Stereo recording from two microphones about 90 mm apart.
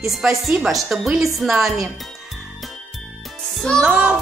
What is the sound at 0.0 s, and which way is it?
Music, centre (ahead or behind).